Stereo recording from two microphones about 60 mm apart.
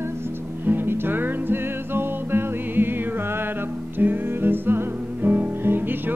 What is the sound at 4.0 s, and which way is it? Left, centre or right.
Music, right.